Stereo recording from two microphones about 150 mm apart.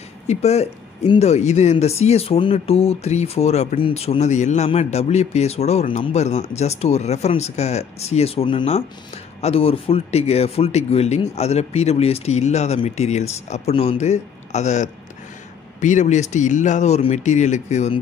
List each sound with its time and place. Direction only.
0.3 s speech: 45° left (ahead or behind)